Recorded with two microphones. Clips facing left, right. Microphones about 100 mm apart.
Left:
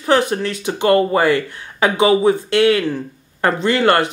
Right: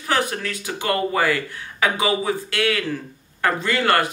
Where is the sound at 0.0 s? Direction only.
25° left (ahead or behind).